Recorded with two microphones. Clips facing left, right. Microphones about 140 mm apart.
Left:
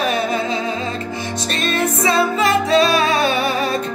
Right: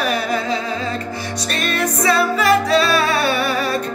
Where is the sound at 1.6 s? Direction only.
25° left (ahead or behind).